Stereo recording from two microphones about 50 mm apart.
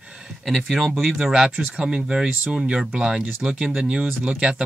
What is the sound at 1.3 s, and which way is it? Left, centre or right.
Speech, right.